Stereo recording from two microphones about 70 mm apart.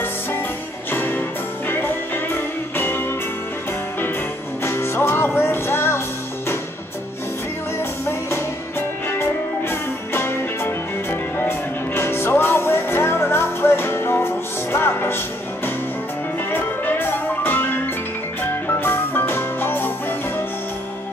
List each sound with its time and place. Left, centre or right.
0.9 s music: left
4.6 s music: left
8.1 s music: left